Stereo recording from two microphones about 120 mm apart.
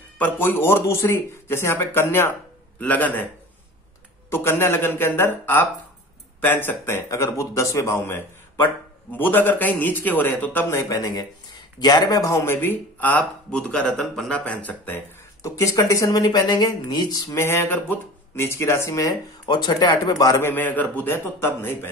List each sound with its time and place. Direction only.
0.2 s a man's voice: 20° left (ahead or behind)
4.3 s a man's voice: 20° left (ahead or behind)
15.4 s speech: 25° left (ahead or behind)